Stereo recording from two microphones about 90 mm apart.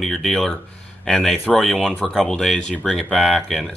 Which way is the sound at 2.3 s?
5° left (ahead or behind).